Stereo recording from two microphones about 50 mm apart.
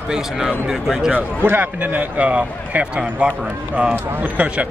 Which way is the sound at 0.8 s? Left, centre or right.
Centre.